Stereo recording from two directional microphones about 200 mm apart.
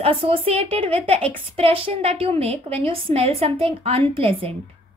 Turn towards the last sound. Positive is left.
turn(degrees=-25)  # may be behind; listen again after turning